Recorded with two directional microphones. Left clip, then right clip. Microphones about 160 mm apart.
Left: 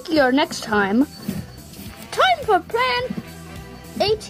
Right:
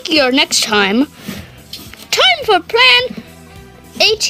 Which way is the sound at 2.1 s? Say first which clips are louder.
Right 6 dB; 25° right (ahead or behind).